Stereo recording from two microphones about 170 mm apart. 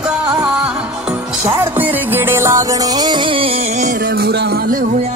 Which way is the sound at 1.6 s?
10° right (ahead or behind).